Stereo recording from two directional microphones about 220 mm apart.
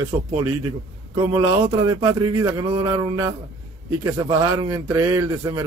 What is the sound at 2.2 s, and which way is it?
Speech, 90° right.